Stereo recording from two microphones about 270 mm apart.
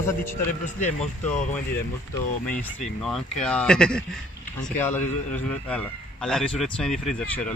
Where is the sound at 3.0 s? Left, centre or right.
Centre.